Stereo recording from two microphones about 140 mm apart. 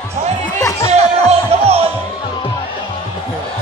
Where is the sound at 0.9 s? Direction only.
50° right (ahead or behind).